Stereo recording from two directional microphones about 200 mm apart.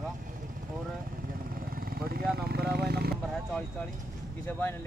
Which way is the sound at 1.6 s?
45° right (ahead or behind).